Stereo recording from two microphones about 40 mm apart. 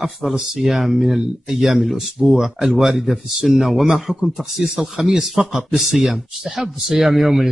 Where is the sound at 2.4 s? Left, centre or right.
Centre.